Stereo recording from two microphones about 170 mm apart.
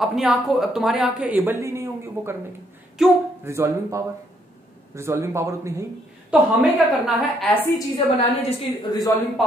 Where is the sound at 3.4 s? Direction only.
15° right (ahead or behind).